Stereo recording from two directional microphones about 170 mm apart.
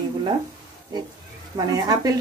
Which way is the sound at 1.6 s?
20° right (ahead or behind).